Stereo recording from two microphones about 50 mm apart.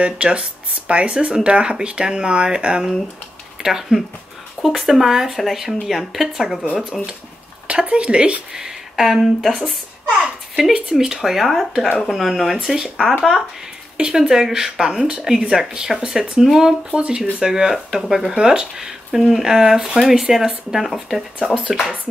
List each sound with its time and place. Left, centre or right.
0.0 s speech: centre
10.7 s speech: centre